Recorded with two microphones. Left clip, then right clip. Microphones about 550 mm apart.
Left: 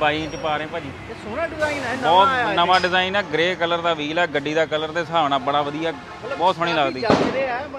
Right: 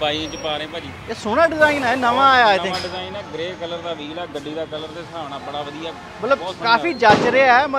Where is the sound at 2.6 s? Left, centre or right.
Left.